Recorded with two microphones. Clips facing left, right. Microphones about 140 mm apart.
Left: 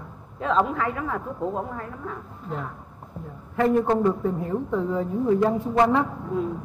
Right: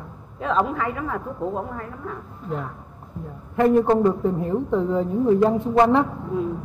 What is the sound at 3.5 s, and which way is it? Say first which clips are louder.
A woman's voice: right 3 dB; 20° right (ahead or behind).